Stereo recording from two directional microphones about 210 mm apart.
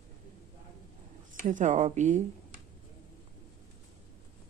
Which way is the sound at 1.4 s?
35° right (ahead or behind).